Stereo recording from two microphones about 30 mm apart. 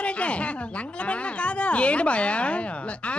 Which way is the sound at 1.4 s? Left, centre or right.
Left.